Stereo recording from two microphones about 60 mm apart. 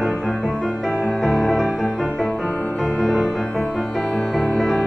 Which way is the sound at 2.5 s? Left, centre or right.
Left.